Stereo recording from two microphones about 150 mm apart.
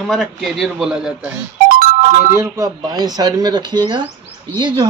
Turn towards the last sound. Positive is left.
turn(degrees=-30)  # may be behind; listen again after turning